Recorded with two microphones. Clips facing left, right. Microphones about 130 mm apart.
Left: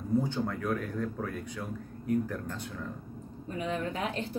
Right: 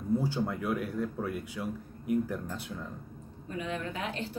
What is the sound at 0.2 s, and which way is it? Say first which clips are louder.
Speech: even; 10° right (ahead or behind).